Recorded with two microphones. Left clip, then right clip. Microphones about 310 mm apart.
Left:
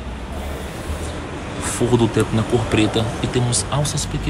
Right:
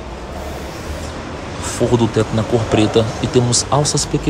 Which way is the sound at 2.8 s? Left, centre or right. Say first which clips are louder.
Right 4 dB; centre.